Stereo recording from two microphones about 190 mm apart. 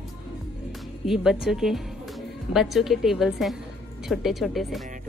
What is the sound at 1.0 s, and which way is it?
A woman's voice, 5° right (ahead or behind).